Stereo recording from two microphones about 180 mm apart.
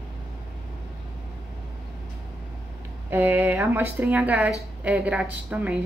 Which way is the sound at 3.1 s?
10° right (ahead or behind).